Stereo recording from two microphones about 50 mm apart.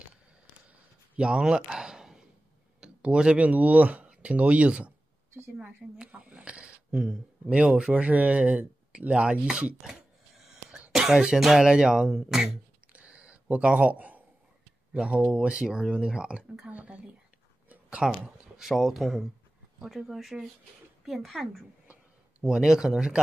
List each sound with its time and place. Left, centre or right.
1.1 s a sound: centre
2.8 s speech: centre
3.4 s speech: right
6.1 s speech: right
6.9 s speech: centre
10.9 s music: centre
11.3 s speech: centre
12.9 s a sound: right
13.7 s a man's voice: right
14.9 s speech: centre
17.6 s a sound: right
18.0 s speech: centre
18.6 s speech: centre
22.4 s speech: centre